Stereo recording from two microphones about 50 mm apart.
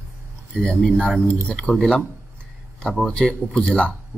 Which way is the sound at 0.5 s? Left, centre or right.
Centre.